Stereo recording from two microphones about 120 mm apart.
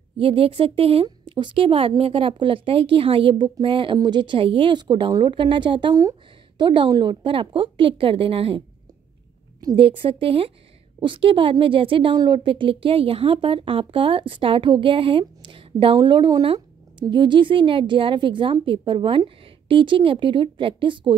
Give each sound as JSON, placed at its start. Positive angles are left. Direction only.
{"t": 0.2, "sound": "speech", "side_deg": -50}
{"t": 1.0, "sound": "speech", "side_deg": -40}
{"t": 9.8, "sound": "speech", "side_deg": -50}